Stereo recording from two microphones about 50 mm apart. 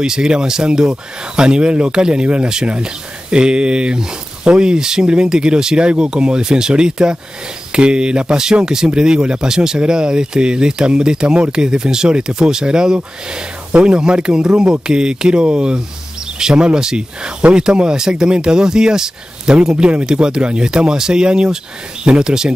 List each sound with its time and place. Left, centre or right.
0.0 s speech: centre